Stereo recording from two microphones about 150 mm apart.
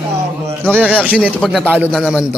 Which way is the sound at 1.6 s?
10° right (ahead or behind).